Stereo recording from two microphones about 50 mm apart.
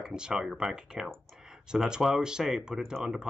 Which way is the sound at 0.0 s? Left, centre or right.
Centre.